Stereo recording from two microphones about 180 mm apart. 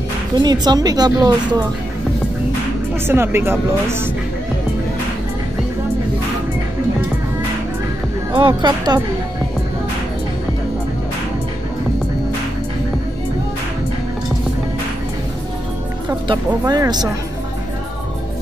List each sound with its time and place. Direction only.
0.4 s a woman's voice: 25° right (ahead or behind)
3.1 s speech: 15° right (ahead or behind)
8.3 s a woman's voice: 25° right (ahead or behind)
16.1 s a woman's voice: 20° right (ahead or behind)